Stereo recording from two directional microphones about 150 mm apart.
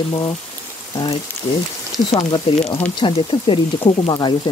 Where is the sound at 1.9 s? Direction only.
30° left (ahead or behind).